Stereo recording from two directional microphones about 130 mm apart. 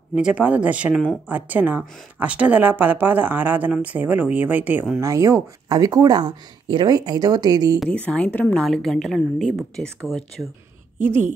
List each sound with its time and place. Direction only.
0.1 s speech: 10° right (ahead or behind); by 7.8 s 30° right (ahead or behind)
7.9 s a woman's voice: 10° left (ahead or behind)
11.0 s a woman's voice: 15° right (ahead or behind)